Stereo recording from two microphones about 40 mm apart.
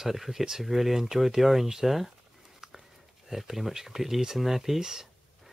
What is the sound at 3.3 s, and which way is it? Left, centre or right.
Speech, centre.